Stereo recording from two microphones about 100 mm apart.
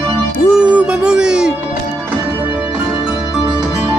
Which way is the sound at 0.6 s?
10° right (ahead or behind).